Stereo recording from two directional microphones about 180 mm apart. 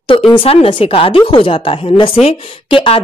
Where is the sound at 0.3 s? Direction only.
30° left (ahead or behind).